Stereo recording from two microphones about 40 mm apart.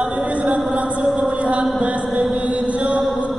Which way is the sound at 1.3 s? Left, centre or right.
Right.